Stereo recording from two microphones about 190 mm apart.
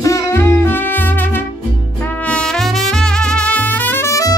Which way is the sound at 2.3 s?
5° left (ahead or behind).